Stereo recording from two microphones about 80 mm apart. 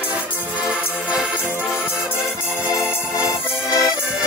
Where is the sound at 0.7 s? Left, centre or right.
Centre.